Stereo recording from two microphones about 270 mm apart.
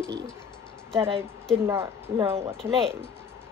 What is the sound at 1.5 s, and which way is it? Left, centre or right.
Speech, centre.